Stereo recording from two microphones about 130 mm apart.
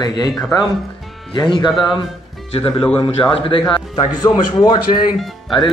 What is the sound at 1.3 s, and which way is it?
Speech, 35° left (ahead or behind).